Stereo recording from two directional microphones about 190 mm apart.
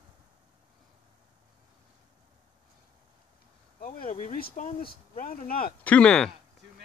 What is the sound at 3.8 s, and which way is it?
Speech, 45° left (ahead or behind).